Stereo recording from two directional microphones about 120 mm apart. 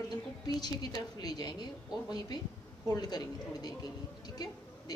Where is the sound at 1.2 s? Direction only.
35° left (ahead or behind).